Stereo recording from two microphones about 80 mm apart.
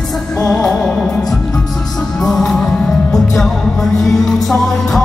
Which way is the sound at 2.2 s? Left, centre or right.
Centre.